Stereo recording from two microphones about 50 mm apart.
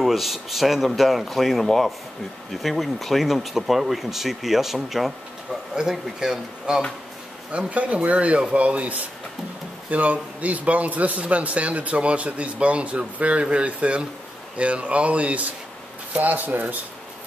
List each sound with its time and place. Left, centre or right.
0.0 s speech: centre
7.5 s a man's voice: right